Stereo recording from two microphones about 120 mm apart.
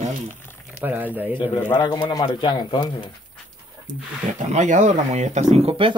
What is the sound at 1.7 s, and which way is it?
A man's voice, 35° left (ahead or behind).